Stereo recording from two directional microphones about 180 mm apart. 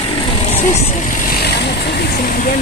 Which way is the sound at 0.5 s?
40° left (ahead or behind).